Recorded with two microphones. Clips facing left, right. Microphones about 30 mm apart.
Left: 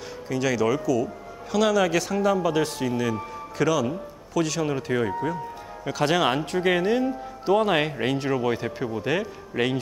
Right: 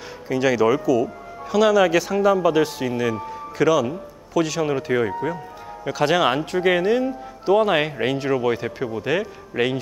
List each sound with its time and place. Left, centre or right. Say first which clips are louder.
0.3 s speech: right 5 dB; centre